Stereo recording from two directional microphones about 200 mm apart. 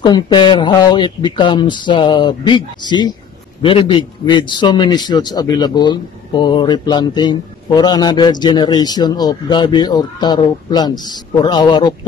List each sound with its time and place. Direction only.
0.0 s a man's voice: 20° left (ahead or behind)